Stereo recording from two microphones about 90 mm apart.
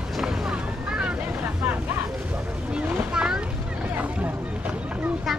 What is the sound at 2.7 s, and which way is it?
Boat, 10° right (ahead or behind).